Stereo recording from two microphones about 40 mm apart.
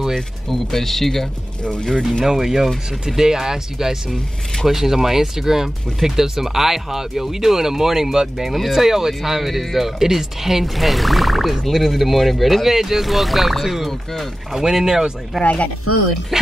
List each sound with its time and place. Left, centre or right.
0.1 s speech: centre
2.2 s speech: centre
15.4 s speech: left